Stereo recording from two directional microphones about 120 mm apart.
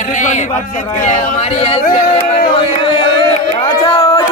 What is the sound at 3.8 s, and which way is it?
Speech, 50° left (ahead or behind).